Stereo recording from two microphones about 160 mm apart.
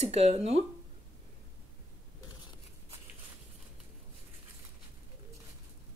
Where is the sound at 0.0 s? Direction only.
40° right (ahead or behind).